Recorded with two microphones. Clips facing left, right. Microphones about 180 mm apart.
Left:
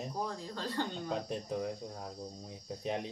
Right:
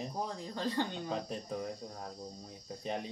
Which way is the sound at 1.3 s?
5° left (ahead or behind).